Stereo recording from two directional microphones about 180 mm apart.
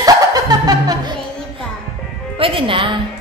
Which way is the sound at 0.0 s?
20° right (ahead or behind).